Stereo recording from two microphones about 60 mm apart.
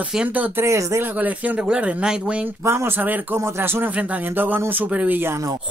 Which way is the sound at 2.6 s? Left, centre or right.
Right.